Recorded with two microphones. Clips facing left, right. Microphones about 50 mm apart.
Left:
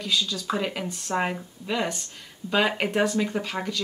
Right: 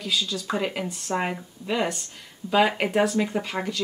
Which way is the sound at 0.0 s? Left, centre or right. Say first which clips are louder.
Left 1 dB; centre.